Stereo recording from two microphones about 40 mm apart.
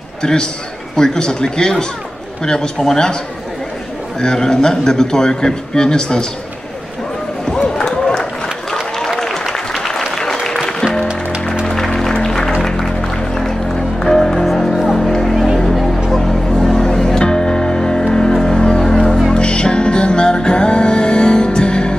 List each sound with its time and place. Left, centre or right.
0.2 s a man's voice: centre
4.2 s a man's voice: centre
7.7 s run: centre
9.2 s applause: centre
11.6 s music: centre
15.3 s music: centre; by 21.9 s left